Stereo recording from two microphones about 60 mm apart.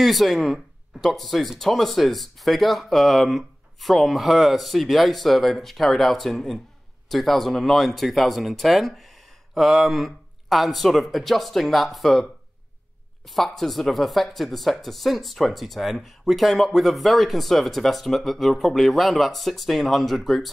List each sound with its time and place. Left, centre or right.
0.0 s speech: centre